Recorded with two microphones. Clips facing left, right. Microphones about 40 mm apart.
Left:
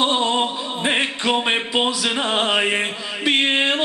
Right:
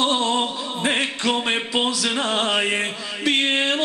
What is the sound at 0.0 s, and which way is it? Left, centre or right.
Music, centre.